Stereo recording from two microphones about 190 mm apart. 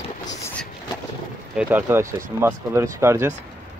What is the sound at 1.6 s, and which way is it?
Speech, 10° right (ahead or behind).